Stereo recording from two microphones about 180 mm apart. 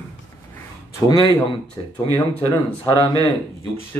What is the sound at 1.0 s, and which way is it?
Speech, 25° left (ahead or behind).